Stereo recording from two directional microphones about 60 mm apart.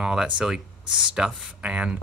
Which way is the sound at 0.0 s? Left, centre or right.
Centre.